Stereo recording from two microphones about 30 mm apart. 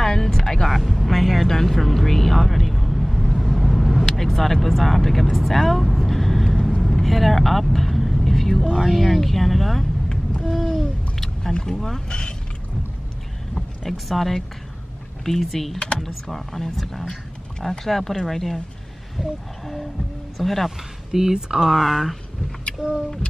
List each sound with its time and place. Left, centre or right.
0.0 s music: centre
0.7 s vehicle: centre
1.5 s vehicle: centre
4.6 s speech: centre
5.5 s vehicle: centre
8.8 s speech: centre
10.4 s owl: centre
11.6 s speech: centre
12.1 s speech: left
13.6 s speech: centre
15.5 s speech: centre
21.1 s speech: centre
21.6 s speech: centre